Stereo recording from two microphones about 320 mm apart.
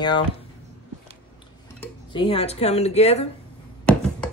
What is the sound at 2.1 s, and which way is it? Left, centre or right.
A woman's voice, centre.